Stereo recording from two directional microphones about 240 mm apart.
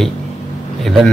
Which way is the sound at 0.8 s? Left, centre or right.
Centre.